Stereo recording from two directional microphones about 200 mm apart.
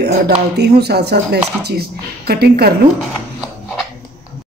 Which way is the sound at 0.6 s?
55° right (ahead or behind).